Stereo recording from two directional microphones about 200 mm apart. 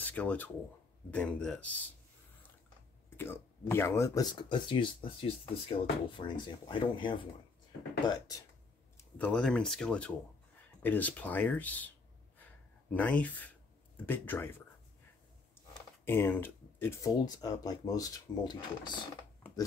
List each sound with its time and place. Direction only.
0.0 s speech: 5° left (ahead or behind)
3.2 s speech: 10° left (ahead or behind)
8.9 s speech: 5° left (ahead or behind)
12.9 s speech: 5° left (ahead or behind)
16.1 s speech: 10° left (ahead or behind)